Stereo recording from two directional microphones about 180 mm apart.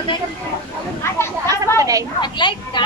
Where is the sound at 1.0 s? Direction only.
15° left (ahead or behind).